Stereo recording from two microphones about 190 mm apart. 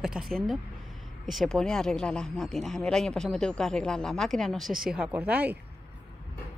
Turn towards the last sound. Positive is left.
turn(degrees=-5)  # may be behind; listen again after turning